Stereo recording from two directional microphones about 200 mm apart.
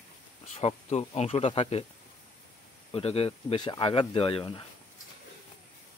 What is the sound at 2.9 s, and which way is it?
Speech, 30° left (ahead or behind).